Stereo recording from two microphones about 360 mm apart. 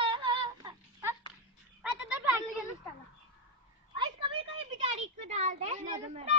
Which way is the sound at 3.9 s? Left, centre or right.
Centre.